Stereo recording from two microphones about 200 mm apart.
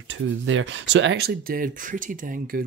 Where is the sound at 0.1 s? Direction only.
70° right (ahead or behind).